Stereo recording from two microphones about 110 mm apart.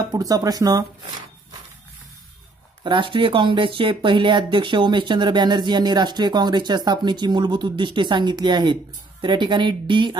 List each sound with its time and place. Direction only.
0.1 s speech: 35° right (ahead or behind)
2.8 s speech: 50° right (ahead or behind)